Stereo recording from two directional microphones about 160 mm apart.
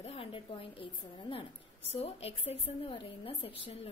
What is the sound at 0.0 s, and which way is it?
A woman's voice, 35° left (ahead or behind).